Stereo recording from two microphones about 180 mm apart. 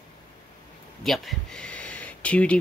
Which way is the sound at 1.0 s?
Centre (ahead or behind).